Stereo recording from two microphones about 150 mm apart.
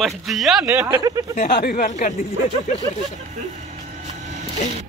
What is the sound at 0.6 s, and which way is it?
Speech, 20° right (ahead or behind).